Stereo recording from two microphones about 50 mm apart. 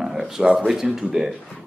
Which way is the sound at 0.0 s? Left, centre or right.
Centre.